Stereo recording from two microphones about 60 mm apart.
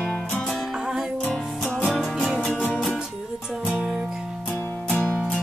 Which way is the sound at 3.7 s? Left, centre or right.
Right.